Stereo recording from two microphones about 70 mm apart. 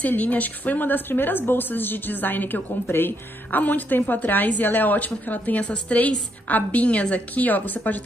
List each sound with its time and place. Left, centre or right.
0.0 s a woman's voice: left